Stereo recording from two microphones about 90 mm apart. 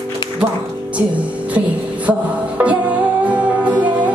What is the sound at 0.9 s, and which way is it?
Music, 15° right (ahead or behind).